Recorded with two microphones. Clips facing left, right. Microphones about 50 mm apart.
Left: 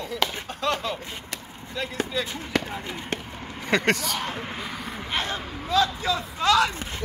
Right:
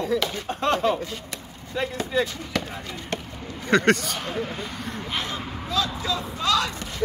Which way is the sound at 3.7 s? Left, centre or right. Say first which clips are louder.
Right 3 dB; centre.